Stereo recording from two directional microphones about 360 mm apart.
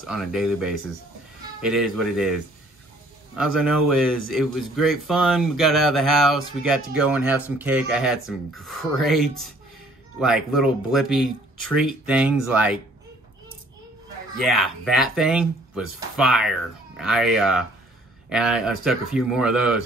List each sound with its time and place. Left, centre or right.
0.1 s speech: centre
14.4 s speech: centre